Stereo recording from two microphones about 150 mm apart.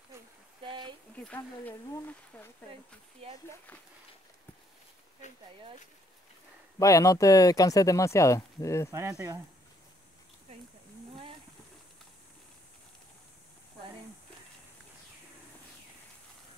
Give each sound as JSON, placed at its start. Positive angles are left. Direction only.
{"t": 0.6, "sound": "a sound", "side_deg": -30}
{"t": 1.1, "sound": "speech", "side_deg": 10}
{"t": 6.8, "sound": "speech", "side_deg": 20}